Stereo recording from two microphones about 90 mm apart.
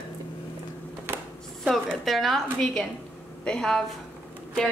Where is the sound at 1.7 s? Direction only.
5° left (ahead or behind).